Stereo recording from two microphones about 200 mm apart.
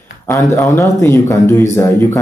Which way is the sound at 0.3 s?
15° left (ahead or behind).